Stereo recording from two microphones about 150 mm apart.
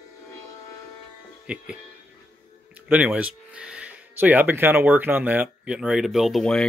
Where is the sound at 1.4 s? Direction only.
5° right (ahead or behind).